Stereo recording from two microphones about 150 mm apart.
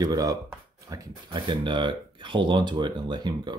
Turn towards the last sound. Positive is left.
turn(degrees=-30)  # may be behind; listen again after turning